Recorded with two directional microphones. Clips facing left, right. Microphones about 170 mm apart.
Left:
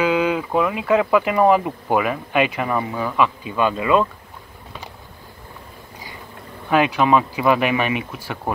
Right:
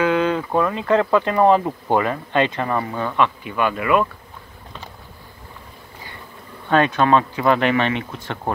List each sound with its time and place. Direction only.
0.0 s speech: 10° left (ahead or behind)
3.4 s speech: 20° left (ahead or behind)
6.7 s speech: 5° left (ahead or behind)